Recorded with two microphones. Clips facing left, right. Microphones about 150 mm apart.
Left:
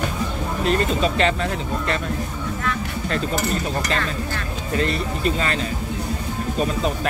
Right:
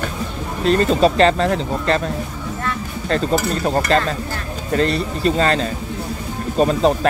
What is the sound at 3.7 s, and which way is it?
Speech, 40° right (ahead or behind).